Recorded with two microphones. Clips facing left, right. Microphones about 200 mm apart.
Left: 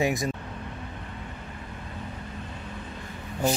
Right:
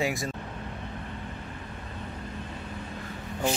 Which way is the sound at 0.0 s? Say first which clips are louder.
Left 3 dB; 20° left (ahead or behind).